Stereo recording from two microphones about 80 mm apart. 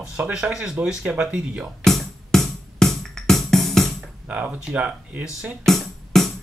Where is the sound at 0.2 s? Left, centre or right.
Centre.